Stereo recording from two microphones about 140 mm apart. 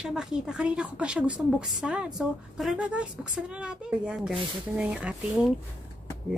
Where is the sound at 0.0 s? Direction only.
5° right (ahead or behind).